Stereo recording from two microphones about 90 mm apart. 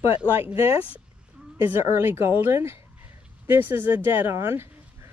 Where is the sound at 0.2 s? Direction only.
20° right (ahead or behind).